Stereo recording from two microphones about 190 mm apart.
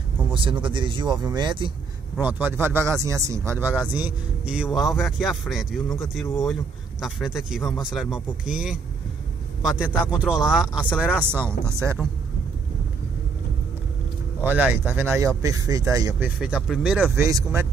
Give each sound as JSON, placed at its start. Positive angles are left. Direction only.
{"t": 0.3, "sound": "speech", "side_deg": -25}
{"t": 2.1, "sound": "speech", "side_deg": -10}
{"t": 11.3, "sound": "speech", "side_deg": -15}
{"t": 14.4, "sound": "speech", "side_deg": -10}
{"t": 16.5, "sound": "speech", "side_deg": 0}
{"t": 17.2, "sound": "speech", "side_deg": -15}